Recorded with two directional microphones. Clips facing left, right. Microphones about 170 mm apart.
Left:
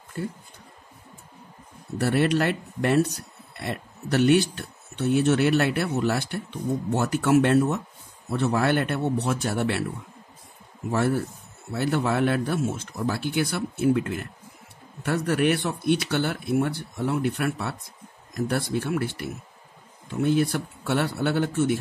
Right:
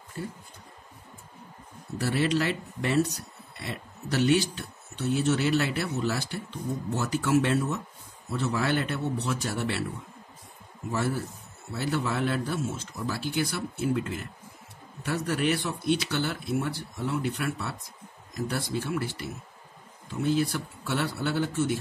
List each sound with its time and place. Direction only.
2.0 s speech: 55° left (ahead or behind)
10.9 s speech: 60° left (ahead or behind)